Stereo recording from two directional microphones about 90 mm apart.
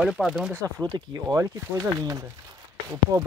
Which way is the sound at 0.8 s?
50° right (ahead or behind).